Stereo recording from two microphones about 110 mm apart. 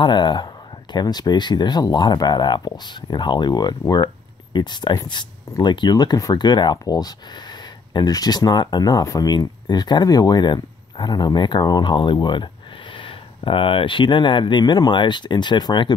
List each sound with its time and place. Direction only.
0.0 s speech: 45° left (ahead or behind)